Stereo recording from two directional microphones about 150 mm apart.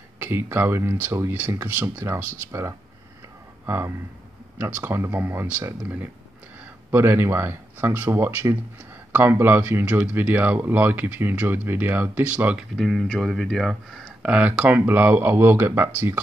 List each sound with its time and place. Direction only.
0.2 s speech: 15° right (ahead or behind)